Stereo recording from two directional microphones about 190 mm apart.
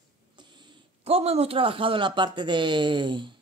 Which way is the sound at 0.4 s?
25° right (ahead or behind).